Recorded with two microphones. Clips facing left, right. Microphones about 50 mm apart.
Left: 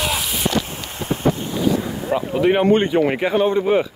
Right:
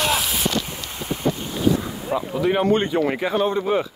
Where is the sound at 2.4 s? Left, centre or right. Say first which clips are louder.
Left 4 dB; left.